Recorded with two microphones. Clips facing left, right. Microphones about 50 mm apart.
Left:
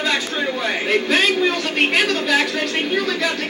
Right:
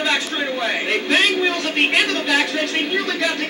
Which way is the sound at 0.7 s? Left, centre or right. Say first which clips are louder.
Left 2 dB; centre.